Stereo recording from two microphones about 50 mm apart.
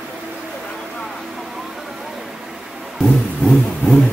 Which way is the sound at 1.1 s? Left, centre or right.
Centre.